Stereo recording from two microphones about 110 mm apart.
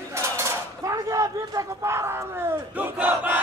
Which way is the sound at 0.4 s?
30° right (ahead or behind).